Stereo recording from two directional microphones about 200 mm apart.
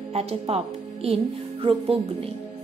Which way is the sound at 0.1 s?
30° right (ahead or behind).